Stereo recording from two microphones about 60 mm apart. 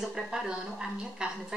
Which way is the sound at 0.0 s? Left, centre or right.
Centre.